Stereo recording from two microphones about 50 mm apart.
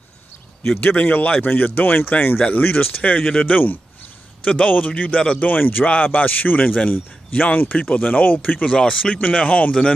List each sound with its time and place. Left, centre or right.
0.7 s a man's voice: left
3.2 s speech: centre
3.4 s a man's voice: left
5.5 s a man's voice: left